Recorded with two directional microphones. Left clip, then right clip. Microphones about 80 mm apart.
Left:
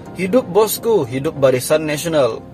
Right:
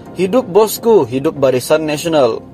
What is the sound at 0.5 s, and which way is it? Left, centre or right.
A man's voice, right.